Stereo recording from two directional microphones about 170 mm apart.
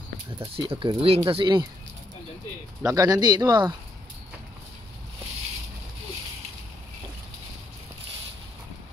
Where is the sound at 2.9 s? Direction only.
20° right (ahead or behind).